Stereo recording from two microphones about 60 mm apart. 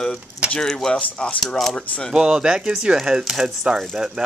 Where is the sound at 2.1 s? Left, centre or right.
Centre.